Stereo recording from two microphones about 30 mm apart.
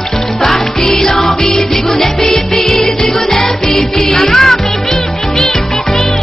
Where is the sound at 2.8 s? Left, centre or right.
Centre.